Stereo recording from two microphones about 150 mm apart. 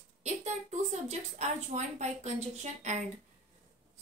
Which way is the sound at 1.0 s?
50° right (ahead or behind).